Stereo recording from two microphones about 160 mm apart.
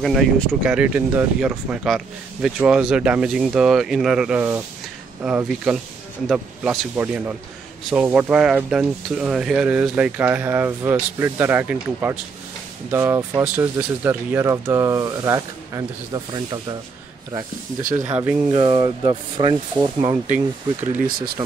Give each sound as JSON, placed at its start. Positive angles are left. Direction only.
{"t": 0.0, "sound": "speech", "side_deg": 0}
{"t": 17.9, "sound": "speech", "side_deg": -15}
{"t": 18.5, "sound": "speech", "side_deg": -30}